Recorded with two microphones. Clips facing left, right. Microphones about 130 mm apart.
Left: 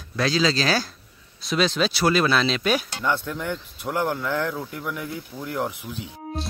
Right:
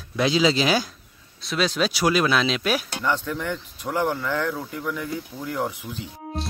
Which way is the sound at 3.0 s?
10° left (ahead or behind).